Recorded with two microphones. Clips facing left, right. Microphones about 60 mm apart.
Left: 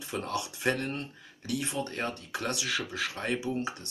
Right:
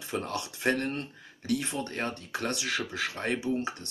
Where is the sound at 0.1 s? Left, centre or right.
Right.